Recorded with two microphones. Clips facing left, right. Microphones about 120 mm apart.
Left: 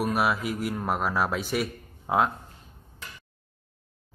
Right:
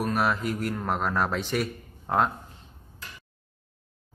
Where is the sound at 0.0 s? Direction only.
10° left (ahead or behind).